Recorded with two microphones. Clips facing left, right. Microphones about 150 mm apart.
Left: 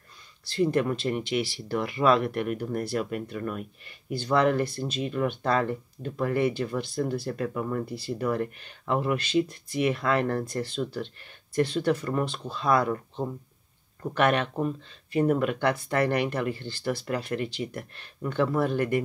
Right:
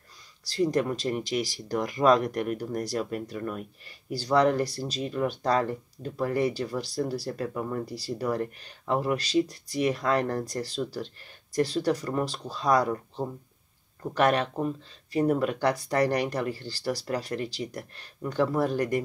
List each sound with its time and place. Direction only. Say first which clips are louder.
0.5 s speech: left 1 dB; 40° right (ahead or behind)